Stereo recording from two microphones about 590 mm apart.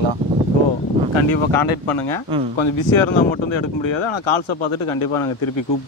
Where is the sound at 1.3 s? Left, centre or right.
Left.